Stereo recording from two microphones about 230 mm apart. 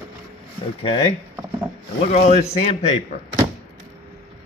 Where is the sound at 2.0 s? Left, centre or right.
Left.